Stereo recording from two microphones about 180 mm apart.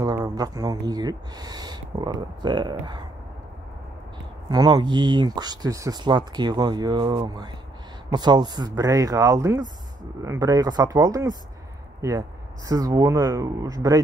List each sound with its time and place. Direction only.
0.0 s speech: 20° right (ahead or behind)
4.5 s speech: 20° right (ahead or behind)